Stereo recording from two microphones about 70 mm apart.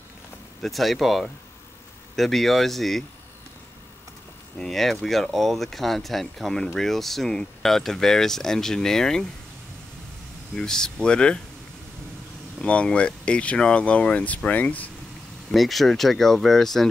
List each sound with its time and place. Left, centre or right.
0.6 s speech: centre
4.6 s speech: centre
10.5 s speech: centre
12.6 s speech: centre
15.5 s speech: centre